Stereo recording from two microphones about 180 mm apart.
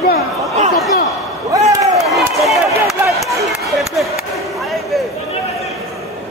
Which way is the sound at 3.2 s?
Centre (ahead or behind).